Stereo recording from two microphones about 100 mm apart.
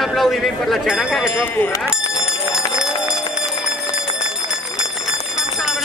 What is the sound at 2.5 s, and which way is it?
Bell, 5° right (ahead or behind).